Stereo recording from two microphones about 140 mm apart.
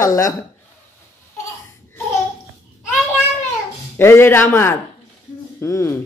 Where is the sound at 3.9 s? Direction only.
15° left (ahead or behind).